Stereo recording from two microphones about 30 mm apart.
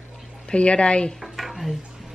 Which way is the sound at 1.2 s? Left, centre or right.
Centre.